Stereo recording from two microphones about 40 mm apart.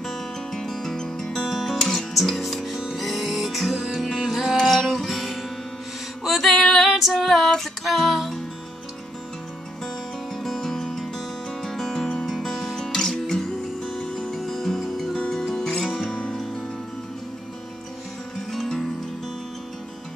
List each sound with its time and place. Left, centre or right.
0.0 s music: centre
1.5 s guitar: centre
2.9 s music: centre
6.5 s female singing: centre
6.8 s female singing: centre
7.8 s music: centre
10.3 s music: centre
12.7 s guitar: centre
13.9 s music: centre
15.1 s music: centre
18.5 s music: centre